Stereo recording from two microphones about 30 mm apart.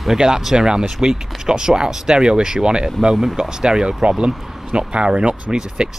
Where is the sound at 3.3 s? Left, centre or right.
Right.